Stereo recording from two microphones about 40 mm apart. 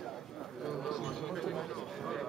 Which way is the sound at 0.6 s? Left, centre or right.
Centre.